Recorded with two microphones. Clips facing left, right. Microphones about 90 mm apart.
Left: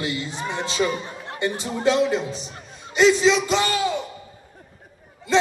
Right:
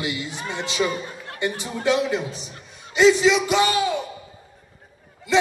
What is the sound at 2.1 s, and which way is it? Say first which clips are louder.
A man's voice: left 1 dB; 15° right (ahead or behind).